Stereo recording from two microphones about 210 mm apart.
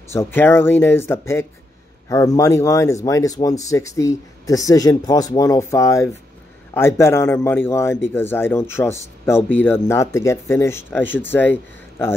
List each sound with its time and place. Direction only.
0.1 s speech: 10° left (ahead or behind)